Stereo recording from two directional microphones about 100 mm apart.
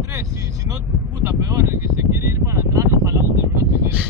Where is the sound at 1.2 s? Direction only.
30° right (ahead or behind).